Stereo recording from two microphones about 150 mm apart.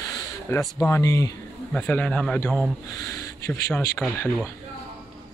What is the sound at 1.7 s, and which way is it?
Speech, 10° left (ahead or behind).